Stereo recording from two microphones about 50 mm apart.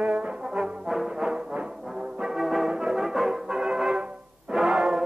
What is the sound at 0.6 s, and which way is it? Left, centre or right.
Brass instrument, centre.